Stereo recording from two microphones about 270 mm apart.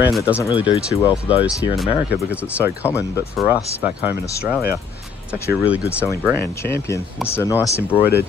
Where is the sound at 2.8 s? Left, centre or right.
Centre.